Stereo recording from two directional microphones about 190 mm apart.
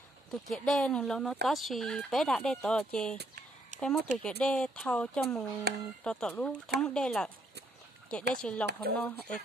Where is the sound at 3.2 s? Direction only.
45° right (ahead or behind).